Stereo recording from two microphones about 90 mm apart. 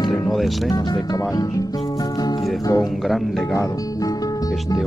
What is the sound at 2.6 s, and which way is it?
Speech, 40° left (ahead or behind).